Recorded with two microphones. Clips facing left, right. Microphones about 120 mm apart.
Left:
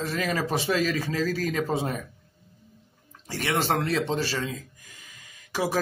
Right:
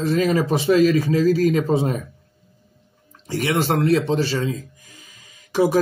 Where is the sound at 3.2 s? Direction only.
15° right (ahead or behind).